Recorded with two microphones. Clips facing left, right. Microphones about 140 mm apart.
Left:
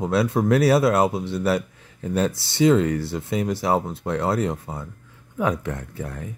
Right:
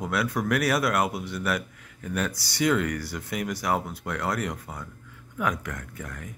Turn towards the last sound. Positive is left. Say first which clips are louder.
# left 6 dB
turn(degrees=30)  # may be behind; listen again after turning